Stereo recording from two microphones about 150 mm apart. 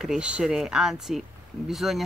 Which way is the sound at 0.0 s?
5° right (ahead or behind).